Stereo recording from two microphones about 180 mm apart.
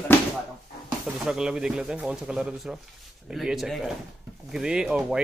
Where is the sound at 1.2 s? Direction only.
5° right (ahead or behind).